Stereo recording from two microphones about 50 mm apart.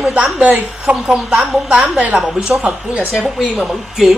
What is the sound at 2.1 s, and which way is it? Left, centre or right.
Speech, centre.